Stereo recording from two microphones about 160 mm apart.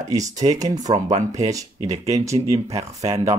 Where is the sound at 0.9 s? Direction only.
45° right (ahead or behind).